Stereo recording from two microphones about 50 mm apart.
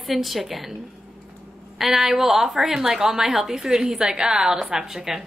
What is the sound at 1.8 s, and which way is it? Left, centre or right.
A woman's voice, centre.